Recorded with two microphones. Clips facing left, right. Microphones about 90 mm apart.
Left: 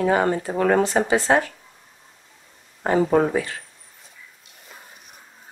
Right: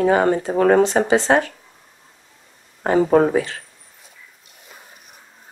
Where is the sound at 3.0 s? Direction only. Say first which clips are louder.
Right 6 dB; 40° right (ahead or behind).